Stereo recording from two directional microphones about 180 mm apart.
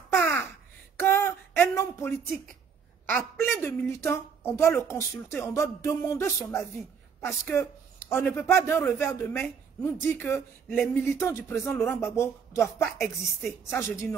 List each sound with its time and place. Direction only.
0.1 s a sound: 10° left (ahead or behind)
3.1 s a woman's voice: 15° left (ahead or behind)
13.4 s speech: centre (ahead or behind)
13.7 s a woman's voice: 15° left (ahead or behind)